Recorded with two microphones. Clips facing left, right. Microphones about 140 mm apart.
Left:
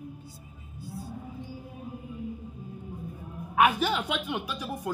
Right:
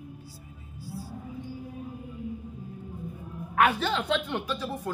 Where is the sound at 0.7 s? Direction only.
20° left (ahead or behind).